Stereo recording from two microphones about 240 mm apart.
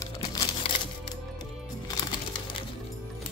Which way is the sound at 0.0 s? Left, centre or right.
Centre.